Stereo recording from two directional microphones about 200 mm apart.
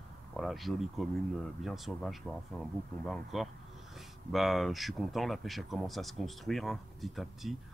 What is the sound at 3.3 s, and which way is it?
Speech, centre (ahead or behind).